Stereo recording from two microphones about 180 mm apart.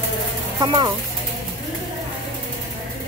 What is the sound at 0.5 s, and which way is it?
Speech, 25° right (ahead or behind).